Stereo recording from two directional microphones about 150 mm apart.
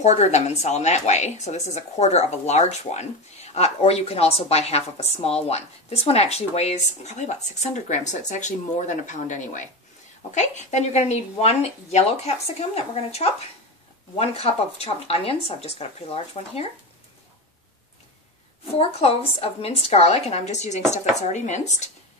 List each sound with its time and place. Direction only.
0.0 s a woman's voice: 50° left (ahead or behind)
18.8 s a woman's voice: 40° left (ahead or behind)